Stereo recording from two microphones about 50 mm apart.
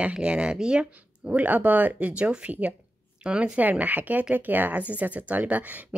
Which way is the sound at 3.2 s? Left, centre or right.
Right.